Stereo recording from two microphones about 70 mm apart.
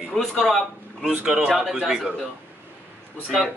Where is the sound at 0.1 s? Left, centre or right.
Centre.